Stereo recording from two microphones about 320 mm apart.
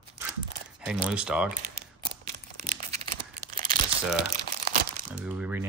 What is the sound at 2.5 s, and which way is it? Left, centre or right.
Crumpling, right.